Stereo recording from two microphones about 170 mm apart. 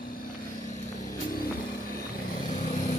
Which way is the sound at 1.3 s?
60° left (ahead or behind).